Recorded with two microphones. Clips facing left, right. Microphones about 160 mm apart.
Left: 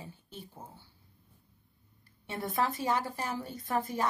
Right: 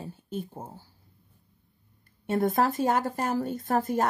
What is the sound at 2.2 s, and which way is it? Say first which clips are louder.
Speech: right 8 dB; 50° right (ahead or behind).